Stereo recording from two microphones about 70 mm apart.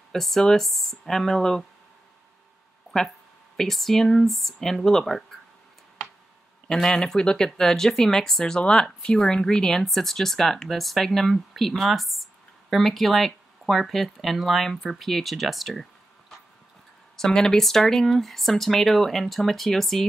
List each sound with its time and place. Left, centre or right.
0.1 s speech: centre
3.5 s speech: centre
6.7 s speech: centre